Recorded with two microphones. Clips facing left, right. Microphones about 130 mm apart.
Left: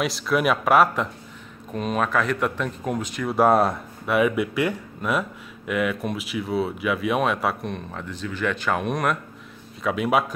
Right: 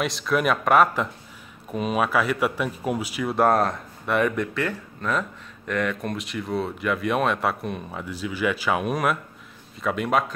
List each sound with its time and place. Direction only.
0.0 s speech: centre (ahead or behind)